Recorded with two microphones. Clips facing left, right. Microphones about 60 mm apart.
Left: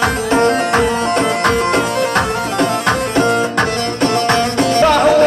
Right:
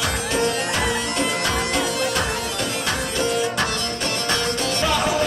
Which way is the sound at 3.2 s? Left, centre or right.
Left.